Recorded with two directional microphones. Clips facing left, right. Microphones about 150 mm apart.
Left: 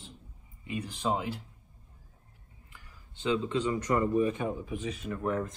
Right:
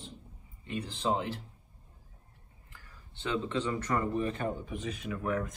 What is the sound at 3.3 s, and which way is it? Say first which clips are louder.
Speech: left 2 dB; 15° left (ahead or behind).